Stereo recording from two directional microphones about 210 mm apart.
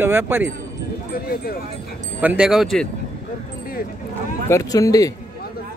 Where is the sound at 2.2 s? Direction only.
5° right (ahead or behind).